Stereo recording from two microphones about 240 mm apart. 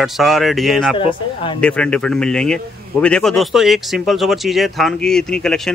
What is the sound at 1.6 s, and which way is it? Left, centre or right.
A man's voice, centre.